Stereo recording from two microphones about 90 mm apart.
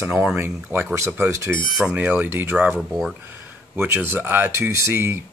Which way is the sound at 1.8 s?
15° right (ahead or behind).